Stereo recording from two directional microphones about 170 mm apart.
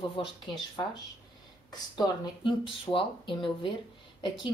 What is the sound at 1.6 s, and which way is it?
Speech, 25° left (ahead or behind).